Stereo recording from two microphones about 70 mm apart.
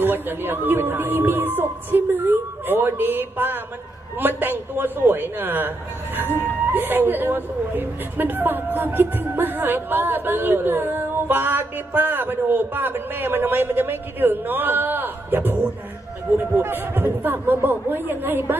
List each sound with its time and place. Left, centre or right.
0.0 s a woman's voice: right
6.7 s a woman's voice: right